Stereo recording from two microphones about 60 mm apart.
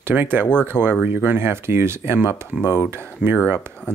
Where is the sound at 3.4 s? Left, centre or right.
Right.